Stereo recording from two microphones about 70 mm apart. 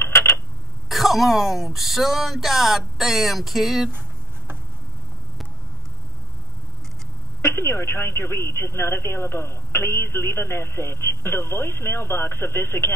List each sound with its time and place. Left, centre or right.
0.0 s a sound: left
0.8 s speech: centre
7.4 s speech: left